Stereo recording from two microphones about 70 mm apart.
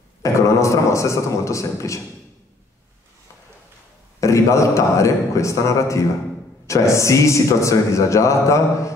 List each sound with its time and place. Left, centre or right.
0.2 s a man's voice: left
4.2 s a man's voice: left